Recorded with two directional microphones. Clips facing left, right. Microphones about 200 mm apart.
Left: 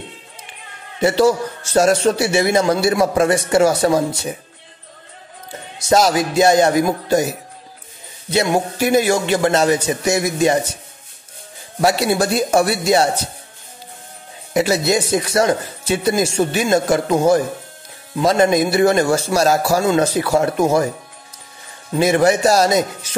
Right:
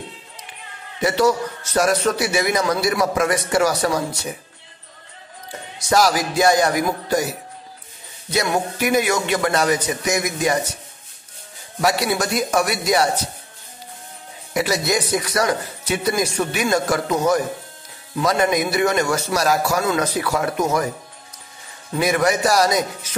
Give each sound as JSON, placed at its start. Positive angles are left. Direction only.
{"t": 1.0, "sound": "a man's voice", "side_deg": 30}
{"t": 5.8, "sound": "a man's voice", "side_deg": 25}
{"t": 8.3, "sound": "a man's voice", "side_deg": 25}
{"t": 11.8, "sound": "a man's voice", "side_deg": 30}
{"t": 14.5, "sound": "a man's voice", "side_deg": 25}
{"t": 21.9, "sound": "a man's voice", "side_deg": 30}